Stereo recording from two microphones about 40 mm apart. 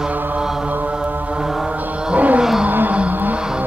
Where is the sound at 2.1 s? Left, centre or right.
Right.